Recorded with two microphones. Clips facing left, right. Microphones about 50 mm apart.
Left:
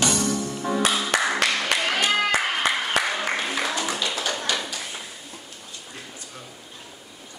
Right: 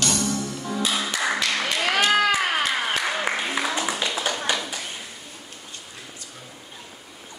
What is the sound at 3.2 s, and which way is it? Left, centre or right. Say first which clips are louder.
Music: right 1 dB; centre.